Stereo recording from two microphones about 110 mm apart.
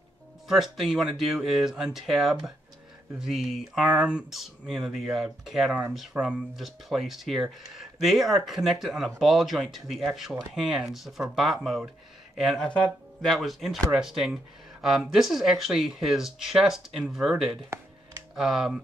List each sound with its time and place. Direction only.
0.5 s speech: centre (ahead or behind)
6.1 s speech: 15° right (ahead or behind)
6.5 s speech: centre (ahead or behind)
12.6 s speech: 10° left (ahead or behind)
13.3 s speech: centre (ahead or behind)